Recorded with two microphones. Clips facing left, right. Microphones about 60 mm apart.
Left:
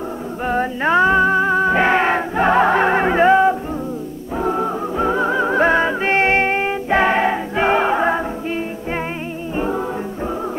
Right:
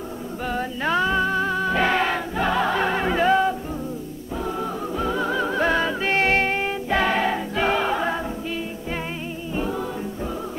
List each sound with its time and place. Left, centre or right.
0.5 s music: left
9.6 s music: left